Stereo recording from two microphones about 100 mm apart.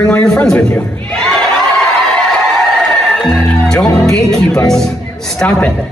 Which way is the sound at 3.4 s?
5° left (ahead or behind).